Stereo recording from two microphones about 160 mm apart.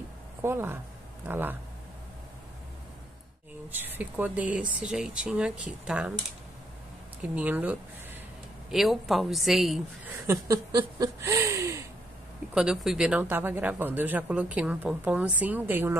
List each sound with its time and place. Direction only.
0.4 s speech: 15° right (ahead or behind)
3.7 s speech: 10° right (ahead or behind)
7.3 s a woman's voice: 10° right (ahead or behind)
10.2 s a sound: 20° right (ahead or behind)
12.5 s speech: 5° right (ahead or behind)